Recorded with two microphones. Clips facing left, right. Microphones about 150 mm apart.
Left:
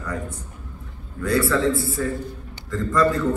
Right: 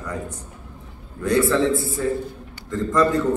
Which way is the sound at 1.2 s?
20° right (ahead or behind).